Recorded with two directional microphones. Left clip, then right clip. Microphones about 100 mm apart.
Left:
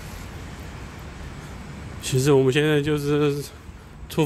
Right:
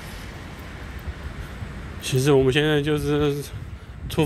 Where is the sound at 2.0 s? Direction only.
25° left (ahead or behind).